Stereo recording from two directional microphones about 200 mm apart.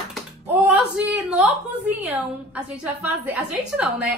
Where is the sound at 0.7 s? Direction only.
5° right (ahead or behind).